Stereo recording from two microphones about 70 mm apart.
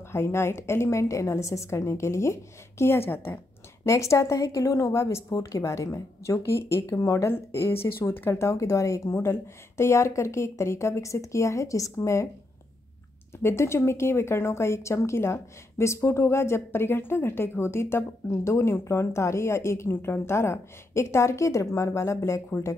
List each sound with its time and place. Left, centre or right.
0.1 s a woman's voice: left
3.8 s a woman's voice: left
13.4 s a woman's voice: left